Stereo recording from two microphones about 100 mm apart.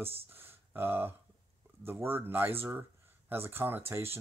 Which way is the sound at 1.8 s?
20° right (ahead or behind).